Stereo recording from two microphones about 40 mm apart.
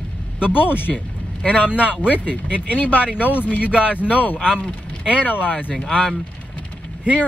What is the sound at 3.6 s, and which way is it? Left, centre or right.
Speech, right.